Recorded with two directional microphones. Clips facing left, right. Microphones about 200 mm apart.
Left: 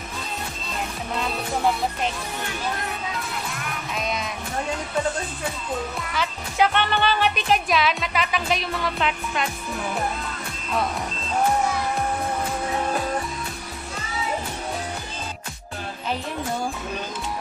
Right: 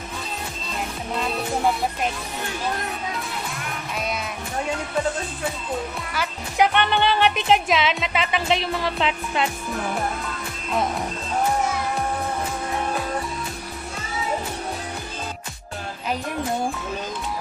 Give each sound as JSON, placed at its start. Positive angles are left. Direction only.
{"t": 6.1, "sound": "speech", "side_deg": -15}
{"t": 7.3, "sound": "music", "side_deg": -20}